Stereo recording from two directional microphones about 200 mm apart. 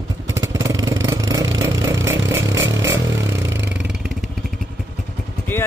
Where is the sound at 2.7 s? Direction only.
15° right (ahead or behind).